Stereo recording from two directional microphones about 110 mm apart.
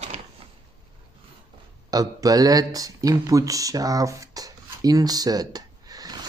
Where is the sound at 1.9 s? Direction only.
35° right (ahead or behind).